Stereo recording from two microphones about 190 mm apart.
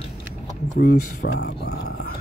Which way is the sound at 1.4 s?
60° left (ahead or behind).